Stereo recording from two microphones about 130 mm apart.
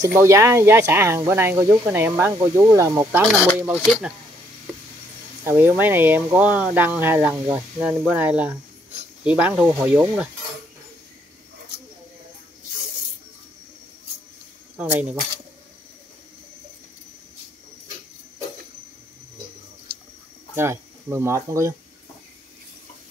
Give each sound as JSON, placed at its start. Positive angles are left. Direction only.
{"t": 0.0, "sound": "speech", "side_deg": -20}
{"t": 3.8, "sound": "speech", "side_deg": 0}
{"t": 5.4, "sound": "speech", "side_deg": -15}
{"t": 8.1, "sound": "speech", "side_deg": -10}
{"t": 14.8, "sound": "speech", "side_deg": -10}
{"t": 20.5, "sound": "speech", "side_deg": -20}